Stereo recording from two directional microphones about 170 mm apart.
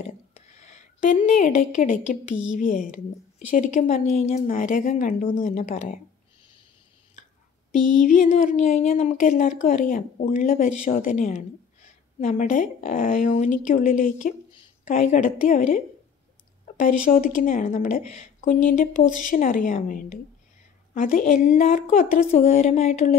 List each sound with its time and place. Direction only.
0.0 s speech: 40° left (ahead or behind)
7.7 s speech: 50° left (ahead or behind)